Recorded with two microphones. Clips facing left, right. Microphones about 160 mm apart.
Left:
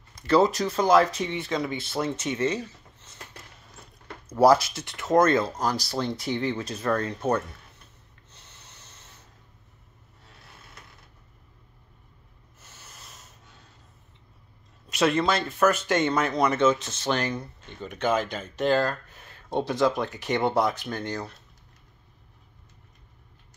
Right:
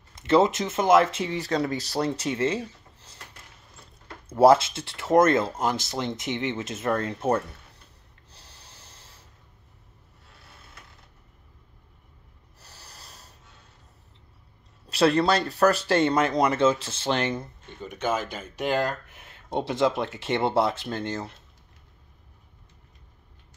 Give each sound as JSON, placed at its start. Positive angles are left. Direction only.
{"t": 0.1, "sound": "speech", "side_deg": -25}
{"t": 1.3, "sound": "speech", "side_deg": -40}
{"t": 4.3, "sound": "speech", "side_deg": -25}
{"t": 8.3, "sound": "snort", "side_deg": -30}
{"t": 12.5, "sound": "snort", "side_deg": -35}
{"t": 14.9, "sound": "speech", "side_deg": -35}
{"t": 17.6, "sound": "speech", "side_deg": -10}